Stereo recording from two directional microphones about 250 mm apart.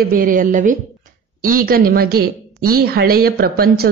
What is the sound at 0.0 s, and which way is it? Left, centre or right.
A woman's voice, right.